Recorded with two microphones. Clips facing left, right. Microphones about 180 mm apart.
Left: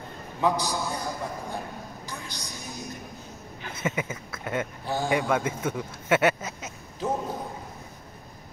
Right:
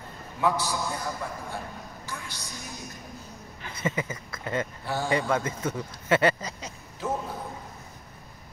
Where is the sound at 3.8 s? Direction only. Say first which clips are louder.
Even; 5° left (ahead or behind).